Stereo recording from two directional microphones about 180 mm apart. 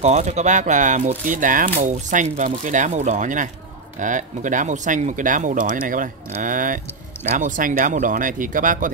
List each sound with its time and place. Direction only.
0.0 s speech: 40° right (ahead or behind)